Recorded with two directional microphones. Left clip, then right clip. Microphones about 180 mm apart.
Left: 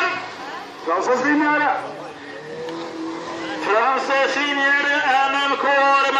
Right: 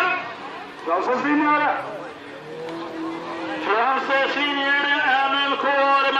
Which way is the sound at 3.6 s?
10° right (ahead or behind).